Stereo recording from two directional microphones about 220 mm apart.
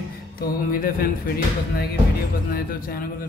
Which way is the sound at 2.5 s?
40° left (ahead or behind).